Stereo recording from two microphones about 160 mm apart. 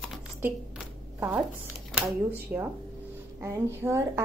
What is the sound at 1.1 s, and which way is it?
Speech, 10° right (ahead or behind).